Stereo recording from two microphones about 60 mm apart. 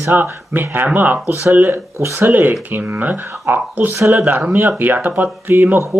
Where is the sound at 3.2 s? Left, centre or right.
Right.